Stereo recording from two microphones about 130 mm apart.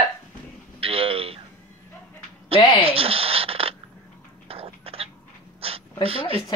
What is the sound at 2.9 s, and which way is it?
Speech, 50° right (ahead or behind).